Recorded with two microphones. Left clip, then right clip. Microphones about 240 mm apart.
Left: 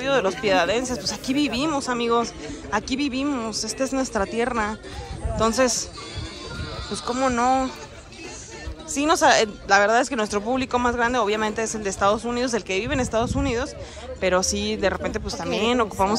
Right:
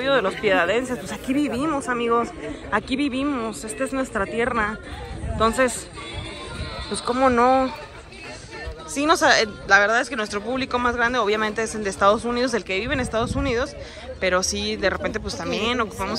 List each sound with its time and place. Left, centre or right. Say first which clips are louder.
0.0 s speech: right 1 dB; centre
7.1 s speech: right 4 dB; centre
8.9 s speech: even; centre